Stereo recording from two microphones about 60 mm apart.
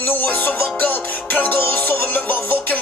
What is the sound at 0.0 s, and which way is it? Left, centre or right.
Music, left.